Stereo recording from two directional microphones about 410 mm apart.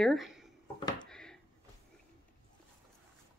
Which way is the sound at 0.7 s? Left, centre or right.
Centre.